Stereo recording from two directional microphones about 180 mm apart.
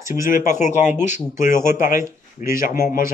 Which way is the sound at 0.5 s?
40° left (ahead or behind).